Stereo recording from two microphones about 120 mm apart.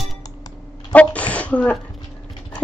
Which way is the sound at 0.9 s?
10° left (ahead or behind).